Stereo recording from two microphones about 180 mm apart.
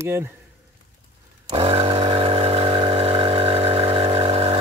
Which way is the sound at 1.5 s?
30° right (ahead or behind).